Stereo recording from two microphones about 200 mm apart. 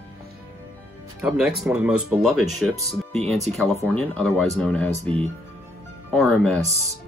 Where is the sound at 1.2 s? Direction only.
5° right (ahead or behind).